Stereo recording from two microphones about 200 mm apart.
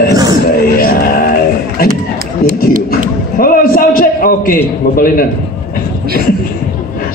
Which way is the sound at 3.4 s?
45° left (ahead or behind).